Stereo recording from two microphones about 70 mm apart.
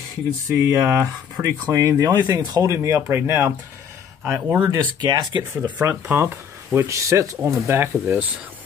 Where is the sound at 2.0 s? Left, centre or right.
Right.